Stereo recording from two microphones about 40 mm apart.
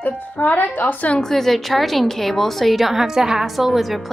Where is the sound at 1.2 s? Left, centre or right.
Centre.